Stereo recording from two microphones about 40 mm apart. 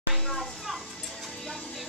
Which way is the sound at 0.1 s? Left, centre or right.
Centre.